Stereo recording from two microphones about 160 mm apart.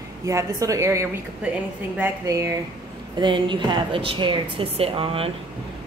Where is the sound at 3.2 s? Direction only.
30° right (ahead or behind).